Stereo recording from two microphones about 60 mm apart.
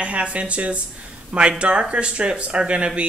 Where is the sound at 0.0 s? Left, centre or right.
Right.